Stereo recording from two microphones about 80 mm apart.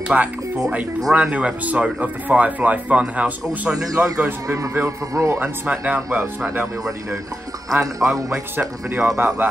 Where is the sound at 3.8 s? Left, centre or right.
Right.